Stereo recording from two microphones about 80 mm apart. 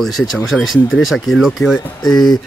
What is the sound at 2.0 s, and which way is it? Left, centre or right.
Speech, left.